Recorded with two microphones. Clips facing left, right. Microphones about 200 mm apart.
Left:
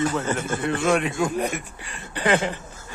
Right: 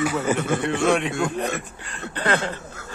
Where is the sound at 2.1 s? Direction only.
10° left (ahead or behind).